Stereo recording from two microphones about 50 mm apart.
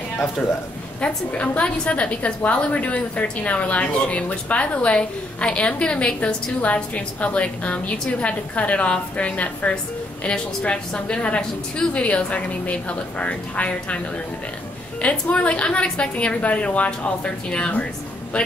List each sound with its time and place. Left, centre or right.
1.0 s a woman's voice: left